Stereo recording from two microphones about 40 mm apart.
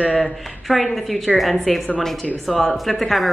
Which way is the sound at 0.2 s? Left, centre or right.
Centre.